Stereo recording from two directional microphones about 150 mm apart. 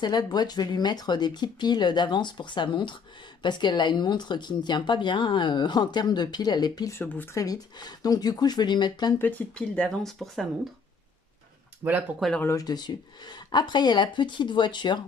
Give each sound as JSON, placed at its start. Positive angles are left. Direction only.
{"t": 0.0, "sound": "speech", "side_deg": 30}
{"t": 7.0, "sound": "speech", "side_deg": 15}
{"t": 7.4, "sound": "speech", "side_deg": 25}
{"t": 9.2, "sound": "speech", "side_deg": 10}
{"t": 11.8, "sound": "speech", "side_deg": -15}
{"t": 12.2, "sound": "speech", "side_deg": 5}
{"t": 12.4, "sound": "speech", "side_deg": 25}